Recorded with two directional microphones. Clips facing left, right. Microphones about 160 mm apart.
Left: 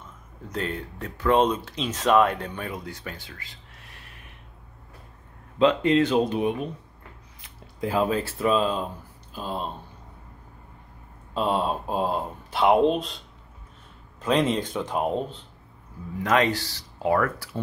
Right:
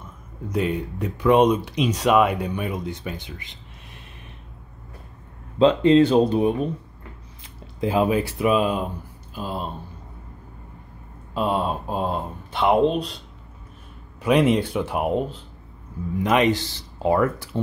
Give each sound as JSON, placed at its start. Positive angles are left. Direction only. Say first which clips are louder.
{"t": 0.5, "sound": "speech", "louder": "right 7 dB", "side_deg": -15}
{"t": 5.6, "sound": "speech", "louder": "right 5 dB", "side_deg": -30}
{"t": 7.4, "sound": "speech", "louder": "right 4 dB", "side_deg": -20}
{"t": 11.3, "sound": "speech", "louder": "right 1 dB", "side_deg": 0}
{"t": 14.2, "sound": "speech", "louder": "right 5 dB", "side_deg": -10}